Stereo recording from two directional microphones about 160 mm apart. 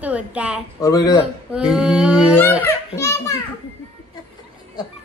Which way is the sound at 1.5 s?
5° right (ahead or behind).